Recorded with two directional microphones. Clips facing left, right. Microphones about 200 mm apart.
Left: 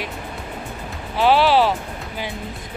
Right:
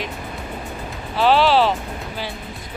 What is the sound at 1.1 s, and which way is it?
Speech, 15° left (ahead or behind).